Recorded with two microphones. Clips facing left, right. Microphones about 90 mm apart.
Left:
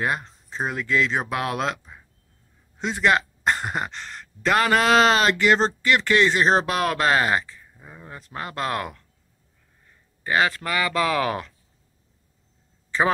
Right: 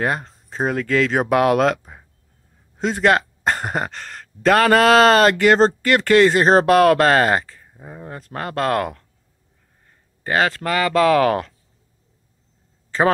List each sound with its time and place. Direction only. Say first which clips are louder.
0.0 s speech: right 3 dB; 45° right (ahead or behind)